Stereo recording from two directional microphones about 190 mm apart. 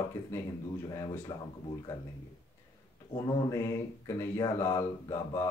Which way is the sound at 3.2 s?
15° left (ahead or behind).